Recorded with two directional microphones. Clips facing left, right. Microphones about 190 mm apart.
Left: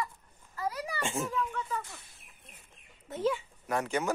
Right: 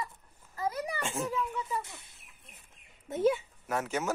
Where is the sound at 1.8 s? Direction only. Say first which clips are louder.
Right 2 dB; 20° right (ahead or behind).